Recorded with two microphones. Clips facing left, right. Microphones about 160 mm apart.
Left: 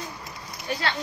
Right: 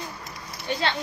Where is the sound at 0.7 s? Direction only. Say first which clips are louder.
Right 2 dB; 20° right (ahead or behind).